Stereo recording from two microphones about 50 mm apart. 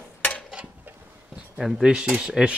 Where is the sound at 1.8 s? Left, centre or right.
Centre.